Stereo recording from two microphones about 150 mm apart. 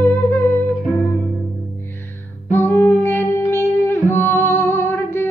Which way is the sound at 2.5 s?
15° left (ahead or behind).